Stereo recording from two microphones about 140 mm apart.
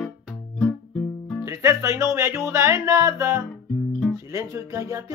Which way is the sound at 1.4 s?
20° right (ahead or behind).